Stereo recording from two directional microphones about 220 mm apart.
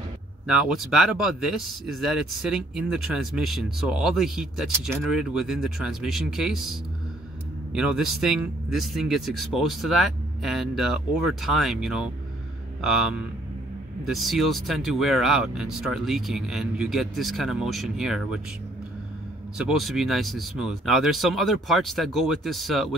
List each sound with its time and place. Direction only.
0.5 s speech: 5° right (ahead or behind)
19.6 s speech: centre (ahead or behind)